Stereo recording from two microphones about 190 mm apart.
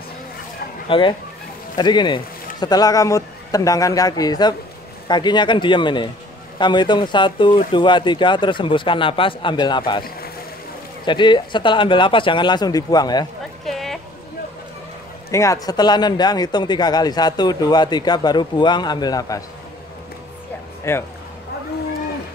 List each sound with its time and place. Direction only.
0.8 s a man's voice: 25° left (ahead or behind)
11.1 s a man's voice: 25° left (ahead or behind)
13.7 s a sound: centre (ahead or behind)
15.3 s a man's voice: 15° left (ahead or behind)
20.9 s speech: 15° left (ahead or behind)